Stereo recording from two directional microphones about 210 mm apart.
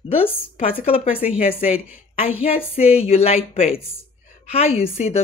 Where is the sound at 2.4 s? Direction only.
30° left (ahead or behind).